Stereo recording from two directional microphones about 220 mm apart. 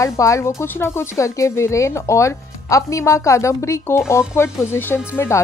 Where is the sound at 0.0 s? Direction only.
15° left (ahead or behind).